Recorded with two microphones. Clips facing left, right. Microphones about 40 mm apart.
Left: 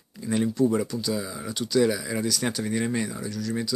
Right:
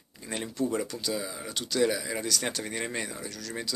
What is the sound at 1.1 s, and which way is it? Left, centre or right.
Speech, centre.